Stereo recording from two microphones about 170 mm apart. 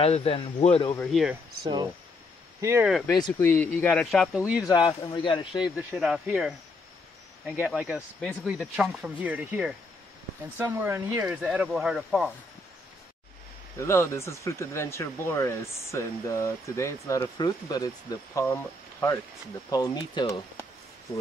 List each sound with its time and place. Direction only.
0.0 s speech: 35° left (ahead or behind)
0.9 s speech: centre (ahead or behind)
1.6 s speech: 25° right (ahead or behind)
3.1 s speech: 25° left (ahead or behind)
3.3 s speech: 10° left (ahead or behind); by 4.6 s 5° right (ahead or behind)
4.6 s speech: 25° left (ahead or behind)
5.8 s speech: 5° right (ahead or behind)
7.6 s speech: 5° right (ahead or behind)
13.7 s speech: 15° left (ahead or behind)